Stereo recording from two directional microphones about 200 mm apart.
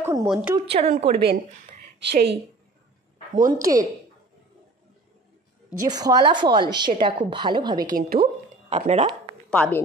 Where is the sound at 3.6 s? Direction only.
20° right (ahead or behind).